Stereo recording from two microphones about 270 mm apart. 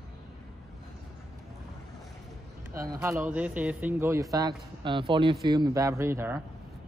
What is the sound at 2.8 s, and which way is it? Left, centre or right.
Speech, centre.